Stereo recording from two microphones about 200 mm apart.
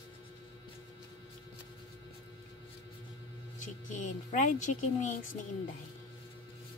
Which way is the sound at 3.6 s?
40° left (ahead or behind).